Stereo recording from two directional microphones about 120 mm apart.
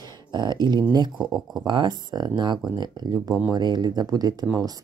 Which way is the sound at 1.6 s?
40° right (ahead or behind).